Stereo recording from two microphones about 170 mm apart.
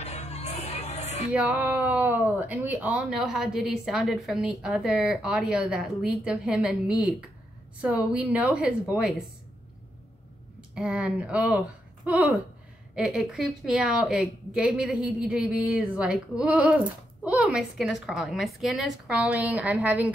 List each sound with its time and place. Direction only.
0.0 s music: 40° left (ahead or behind)
1.3 s a woman's voice: 10° right (ahead or behind)
10.7 s a woman's voice: 5° right (ahead or behind)